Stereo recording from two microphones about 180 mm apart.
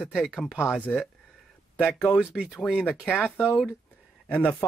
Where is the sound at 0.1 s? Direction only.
Centre (ahead or behind).